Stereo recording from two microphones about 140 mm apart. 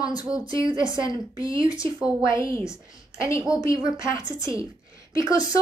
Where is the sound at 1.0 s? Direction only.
25° left (ahead or behind).